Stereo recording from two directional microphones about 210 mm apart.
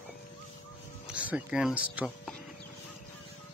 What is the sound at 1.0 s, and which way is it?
Speech, 5° right (ahead or behind).